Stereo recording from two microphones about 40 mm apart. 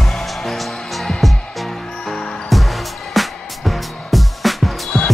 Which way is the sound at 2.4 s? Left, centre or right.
Centre.